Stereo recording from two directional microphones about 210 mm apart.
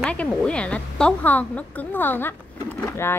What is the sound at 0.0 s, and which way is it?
A woman's voice, 5° left (ahead or behind).